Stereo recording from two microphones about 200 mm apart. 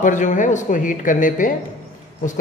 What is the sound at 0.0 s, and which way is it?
Speech, 40° left (ahead or behind).